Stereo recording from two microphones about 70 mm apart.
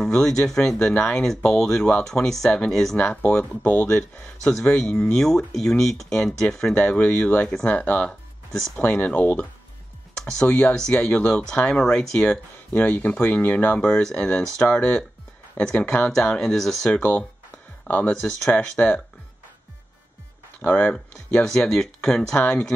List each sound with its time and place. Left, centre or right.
0.0 s speech: centre
0.9 s speech: centre
1.2 s speech: centre
7.0 s speech: left
8.1 s speech: centre; by 9.5 s left
10.1 s speech: centre; by 13.7 s left
13.7 s speech: centre
18.1 s speech: centre
20.6 s speech: centre